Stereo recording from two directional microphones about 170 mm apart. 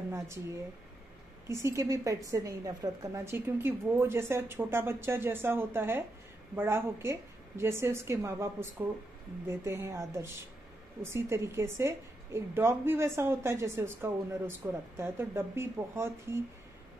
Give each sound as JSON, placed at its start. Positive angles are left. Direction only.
{"t": 0.1, "sound": "a woman's voice", "side_deg": -15}